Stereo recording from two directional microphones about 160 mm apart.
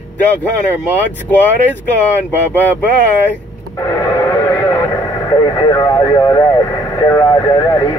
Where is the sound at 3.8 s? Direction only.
20° left (ahead or behind).